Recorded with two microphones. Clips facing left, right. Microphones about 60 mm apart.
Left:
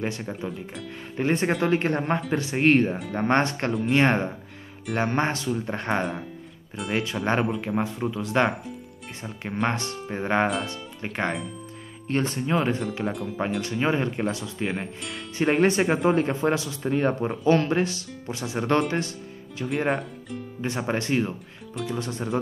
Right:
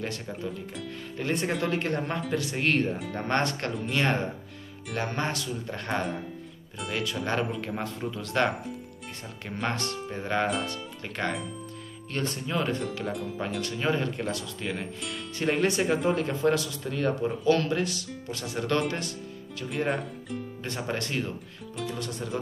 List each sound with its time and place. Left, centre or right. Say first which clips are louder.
0.0 s speech: left 4 dB; left
7.5 s speech: left 6 dB; centre
9.7 s speech: left 3 dB; left
13.1 s speech: left 2 dB; centre
13.6 s speech: left 2 dB; left
19.9 s speech: left 3 dB; centre
20.6 s speech: left 7 dB; left